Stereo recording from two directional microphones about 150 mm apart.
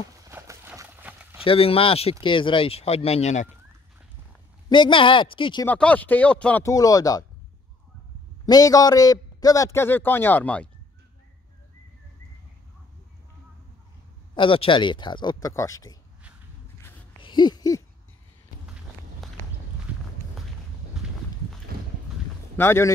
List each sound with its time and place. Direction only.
0.3 s a sound: 20° right (ahead or behind)
1.4 s speech: 40° left (ahead or behind)
4.6 s speech: 30° left (ahead or behind)
5.7 s speech: 10° left (ahead or behind)
6.6 s a man's voice: 20° left (ahead or behind)
8.5 s a man's voice: 25° left (ahead or behind); by 10.7 s 10° left (ahead or behind)
14.3 s speech: 35° left (ahead or behind)
17.2 s owl: 30° left (ahead or behind)
19.2 s walk: centre (ahead or behind)
21.0 s walk: 5° right (ahead or behind)
22.6 s speech: 15° left (ahead or behind)